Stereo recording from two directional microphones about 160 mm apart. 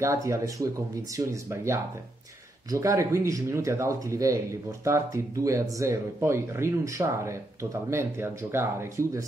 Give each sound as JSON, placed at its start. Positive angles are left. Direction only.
{"t": 0.0, "sound": "speech", "side_deg": -20}